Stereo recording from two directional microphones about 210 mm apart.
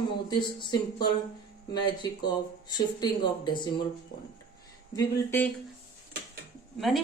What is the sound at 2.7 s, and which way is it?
A man's voice, 20° left (ahead or behind).